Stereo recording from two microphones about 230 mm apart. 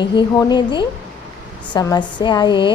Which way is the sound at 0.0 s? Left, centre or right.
Centre.